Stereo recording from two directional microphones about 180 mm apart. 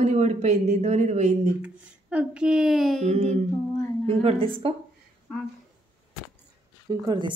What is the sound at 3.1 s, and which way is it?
Speech, 40° right (ahead or behind).